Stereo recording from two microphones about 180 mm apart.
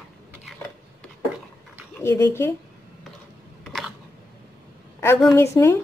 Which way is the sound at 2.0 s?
15° left (ahead or behind).